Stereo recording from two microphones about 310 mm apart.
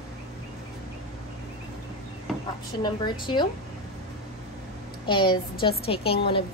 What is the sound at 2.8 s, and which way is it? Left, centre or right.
Speech, centre.